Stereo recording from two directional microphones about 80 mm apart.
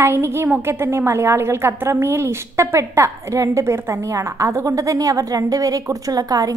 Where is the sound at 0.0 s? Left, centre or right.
Right.